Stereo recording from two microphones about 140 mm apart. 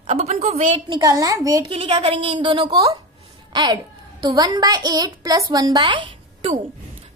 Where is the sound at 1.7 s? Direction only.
40° right (ahead or behind).